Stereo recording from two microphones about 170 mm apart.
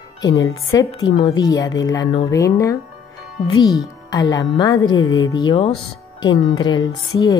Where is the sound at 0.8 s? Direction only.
30° left (ahead or behind).